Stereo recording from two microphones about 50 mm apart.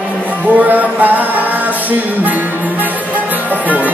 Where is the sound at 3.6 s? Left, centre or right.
Right.